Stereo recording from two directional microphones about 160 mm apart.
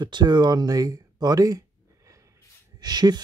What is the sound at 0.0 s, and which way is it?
Speech, 25° right (ahead or behind).